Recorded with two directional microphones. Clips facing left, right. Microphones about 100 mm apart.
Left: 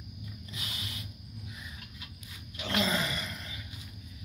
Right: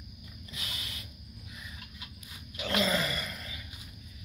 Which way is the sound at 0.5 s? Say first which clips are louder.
Right 1 dB; 30° left (ahead or behind).